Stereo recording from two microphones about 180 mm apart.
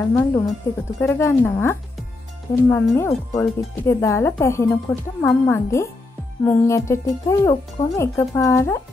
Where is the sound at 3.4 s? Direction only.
15° left (ahead or behind).